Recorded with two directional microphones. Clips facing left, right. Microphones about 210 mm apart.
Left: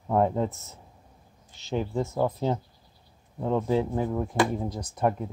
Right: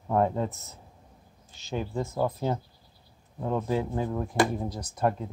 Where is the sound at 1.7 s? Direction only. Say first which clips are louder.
Left 3 dB; 20° left (ahead or behind).